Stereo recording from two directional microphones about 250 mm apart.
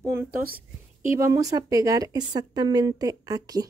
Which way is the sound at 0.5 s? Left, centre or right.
Right.